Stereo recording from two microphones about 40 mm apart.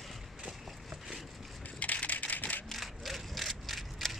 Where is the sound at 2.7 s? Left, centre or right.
Centre.